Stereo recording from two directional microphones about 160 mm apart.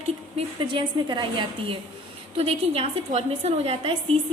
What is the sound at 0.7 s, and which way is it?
A woman's voice, 30° right (ahead or behind).